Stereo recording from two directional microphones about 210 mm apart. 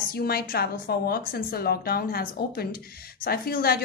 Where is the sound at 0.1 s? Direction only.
45° left (ahead or behind).